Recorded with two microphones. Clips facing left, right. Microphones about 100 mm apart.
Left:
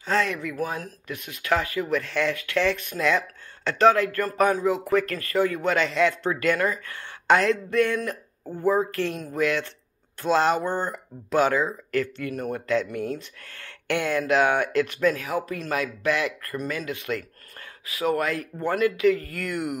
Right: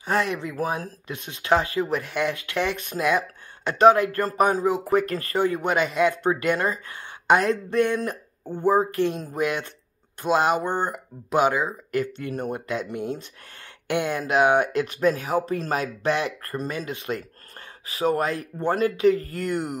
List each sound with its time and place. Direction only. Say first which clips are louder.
0.0 s speech: even; 20° right (ahead or behind)
12.2 s speech: even; 30° right (ahead or behind)